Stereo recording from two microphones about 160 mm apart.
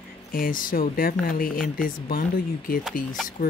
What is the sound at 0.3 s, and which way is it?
Speech, 60° left (ahead or behind).